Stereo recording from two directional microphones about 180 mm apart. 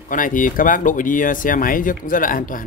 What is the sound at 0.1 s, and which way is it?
Speech, 50° left (ahead or behind).